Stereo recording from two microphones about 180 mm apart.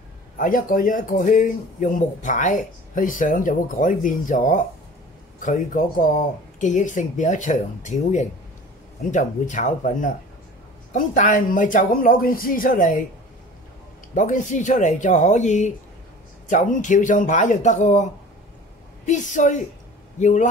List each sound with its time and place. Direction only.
0.4 s speech: 50° left (ahead or behind)
14.1 s speech: 45° left (ahead or behind)